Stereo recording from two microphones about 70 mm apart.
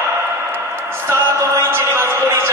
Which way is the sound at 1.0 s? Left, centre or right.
Right.